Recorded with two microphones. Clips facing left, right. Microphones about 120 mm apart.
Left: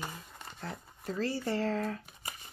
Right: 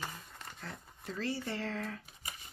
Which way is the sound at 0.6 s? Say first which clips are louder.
Left 8 dB; 40° left (ahead or behind).